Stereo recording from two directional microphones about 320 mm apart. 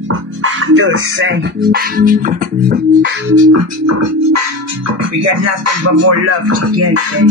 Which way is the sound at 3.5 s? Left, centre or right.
Right.